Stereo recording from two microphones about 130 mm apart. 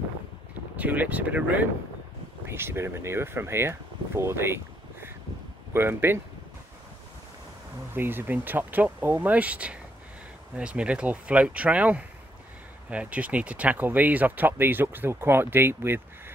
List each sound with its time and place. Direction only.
0.7 s speech: 10° right (ahead or behind)
5.7 s speech: 15° right (ahead or behind)
7.9 s speech: 15° right (ahead or behind)